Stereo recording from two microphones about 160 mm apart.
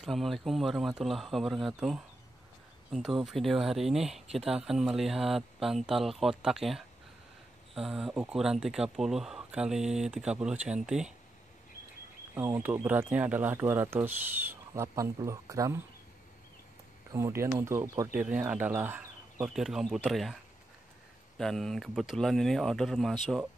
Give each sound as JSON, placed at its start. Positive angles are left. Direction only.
{"t": 0.0, "sound": "speech", "side_deg": 0}
{"t": 12.4, "sound": "speech", "side_deg": -10}
{"t": 17.1, "sound": "speech", "side_deg": -15}
{"t": 21.4, "sound": "speech", "side_deg": 0}